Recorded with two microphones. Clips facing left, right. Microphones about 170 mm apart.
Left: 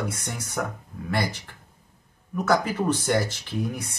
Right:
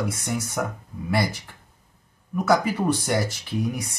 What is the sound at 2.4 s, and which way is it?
Speech, 10° right (ahead or behind).